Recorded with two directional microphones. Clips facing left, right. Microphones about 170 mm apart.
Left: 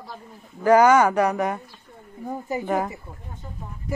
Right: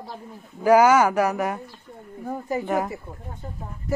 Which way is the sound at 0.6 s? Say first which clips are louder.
Even; 10° right (ahead or behind).